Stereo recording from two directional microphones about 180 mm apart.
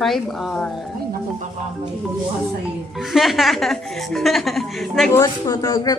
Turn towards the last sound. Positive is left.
turn(degrees=20)  # may be behind; listen again after turning